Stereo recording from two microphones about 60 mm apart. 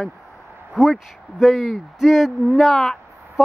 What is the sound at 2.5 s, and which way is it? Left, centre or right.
Speech, centre.